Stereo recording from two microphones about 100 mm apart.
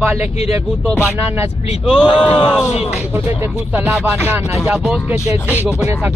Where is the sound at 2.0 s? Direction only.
60° left (ahead or behind).